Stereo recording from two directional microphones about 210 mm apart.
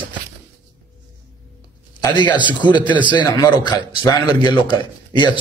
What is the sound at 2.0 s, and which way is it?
A man's voice, 20° left (ahead or behind).